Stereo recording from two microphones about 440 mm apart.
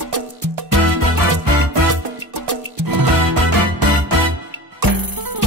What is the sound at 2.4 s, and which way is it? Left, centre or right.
Music, right.